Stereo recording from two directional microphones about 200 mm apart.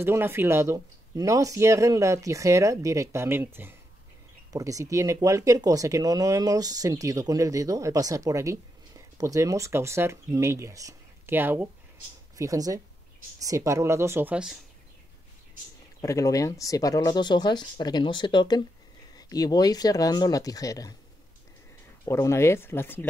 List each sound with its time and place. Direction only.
0.0 s speech: 10° right (ahead or behind)
16.0 s speech: 15° left (ahead or behind)
22.0 s speech: 15° left (ahead or behind)